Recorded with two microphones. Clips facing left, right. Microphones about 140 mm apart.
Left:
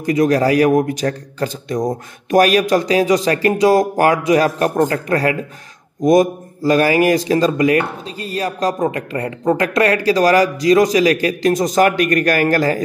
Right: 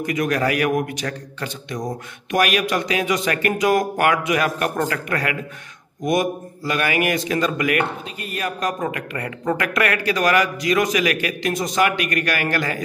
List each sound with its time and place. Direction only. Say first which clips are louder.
0.0 s a man's voice: left 7 dB; 35° left (ahead or behind)